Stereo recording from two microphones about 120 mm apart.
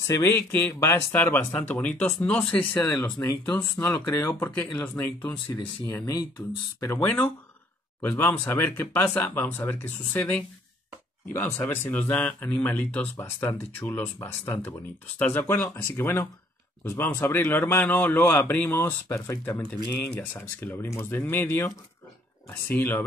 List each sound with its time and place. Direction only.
0.0 s speech: 25° left (ahead or behind)
5.9 s speech: 30° left (ahead or behind)
7.0 s speech: 15° left (ahead or behind)